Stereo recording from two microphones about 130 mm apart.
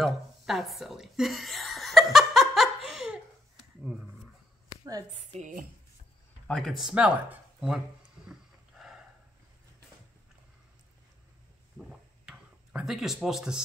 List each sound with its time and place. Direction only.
0.0 s a sound: centre (ahead or behind)
3.8 s speech: 5° right (ahead or behind)
5.1 s a woman's voice: 65° right (ahead or behind)
6.4 s speech: 5° left (ahead or behind)
8.3 s wild animals: 5° right (ahead or behind)
11.9 s a sound: 5° right (ahead or behind)